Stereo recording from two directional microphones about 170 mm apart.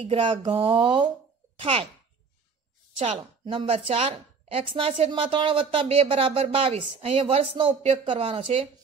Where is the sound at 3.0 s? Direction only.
30° right (ahead or behind).